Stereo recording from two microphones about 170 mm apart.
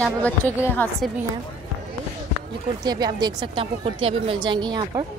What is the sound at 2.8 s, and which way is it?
A woman's voice, 20° right (ahead or behind).